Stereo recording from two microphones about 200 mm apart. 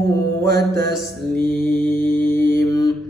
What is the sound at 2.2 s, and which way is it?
Mantra, 60° right (ahead or behind).